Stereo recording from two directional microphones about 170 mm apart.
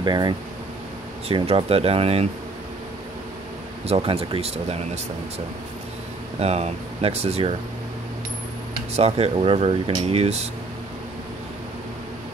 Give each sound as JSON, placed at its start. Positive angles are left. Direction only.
{"t": 0.0, "sound": "speech", "side_deg": -25}
{"t": 1.3, "sound": "speech", "side_deg": -35}
{"t": 3.8, "sound": "speech", "side_deg": -35}
{"t": 6.4, "sound": "speech", "side_deg": -40}
{"t": 8.9, "sound": "speech", "side_deg": -35}